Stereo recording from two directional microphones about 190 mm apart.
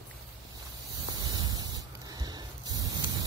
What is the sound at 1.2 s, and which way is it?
Spray, 20° right (ahead or behind).